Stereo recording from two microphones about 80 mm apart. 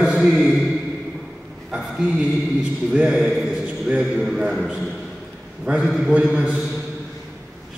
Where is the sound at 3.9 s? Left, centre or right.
Centre.